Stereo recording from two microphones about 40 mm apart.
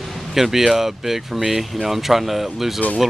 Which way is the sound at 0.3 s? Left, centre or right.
Centre.